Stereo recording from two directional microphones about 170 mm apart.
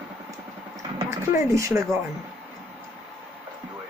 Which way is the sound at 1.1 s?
15° right (ahead or behind).